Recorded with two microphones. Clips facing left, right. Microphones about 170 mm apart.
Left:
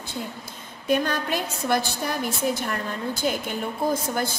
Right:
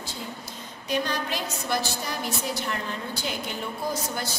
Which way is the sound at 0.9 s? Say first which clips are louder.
Left 5 dB; 50° left (ahead or behind).